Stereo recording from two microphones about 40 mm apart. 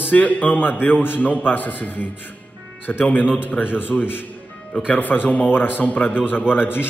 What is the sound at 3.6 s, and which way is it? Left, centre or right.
Speech, left.